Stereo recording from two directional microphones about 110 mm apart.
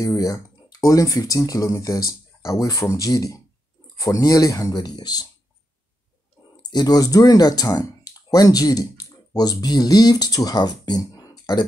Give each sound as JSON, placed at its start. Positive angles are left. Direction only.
{"t": 0.0, "sound": "speech", "side_deg": 30}
{"t": 6.7, "sound": "speech", "side_deg": 35}